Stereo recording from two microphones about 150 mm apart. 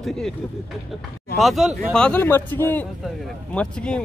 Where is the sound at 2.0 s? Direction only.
10° left (ahead or behind).